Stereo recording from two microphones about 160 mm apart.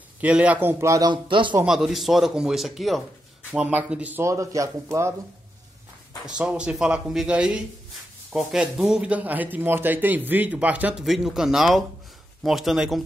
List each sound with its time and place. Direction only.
0.2 s speech: 10° right (ahead or behind); by 1.5 s 30° right (ahead or behind)
1.5 s speech: 5° right (ahead or behind)
6.2 s speech: 5° right (ahead or behind)